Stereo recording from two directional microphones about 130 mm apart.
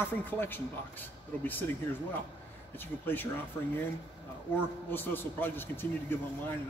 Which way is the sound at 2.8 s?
15° left (ahead or behind).